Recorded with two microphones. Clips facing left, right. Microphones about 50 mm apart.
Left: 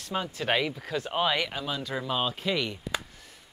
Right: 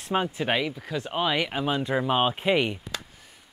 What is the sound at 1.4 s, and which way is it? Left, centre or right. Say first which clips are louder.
Speech: right 5 dB; right.